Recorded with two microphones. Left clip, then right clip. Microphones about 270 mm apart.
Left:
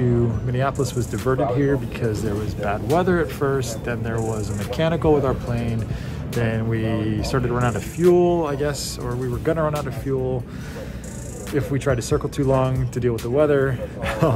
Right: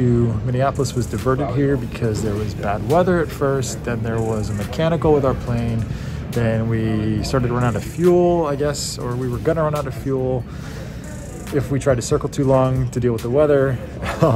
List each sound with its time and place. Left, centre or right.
0.0 s speech: centre
11.5 s speech: centre